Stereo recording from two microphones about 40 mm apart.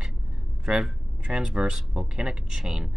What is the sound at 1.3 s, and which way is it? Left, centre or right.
Speech, right.